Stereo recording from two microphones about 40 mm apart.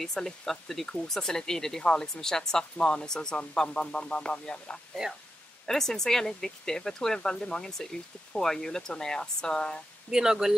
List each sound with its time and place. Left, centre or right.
0.0 s speech: centre
5.7 s speech: centre
10.1 s speech: centre